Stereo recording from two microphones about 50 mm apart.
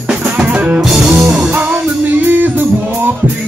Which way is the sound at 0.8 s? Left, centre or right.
Centre.